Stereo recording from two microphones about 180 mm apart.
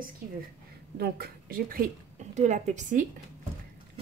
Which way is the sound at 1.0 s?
55° right (ahead or behind).